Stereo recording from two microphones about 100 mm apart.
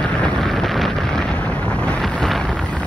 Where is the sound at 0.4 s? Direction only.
Centre (ahead or behind).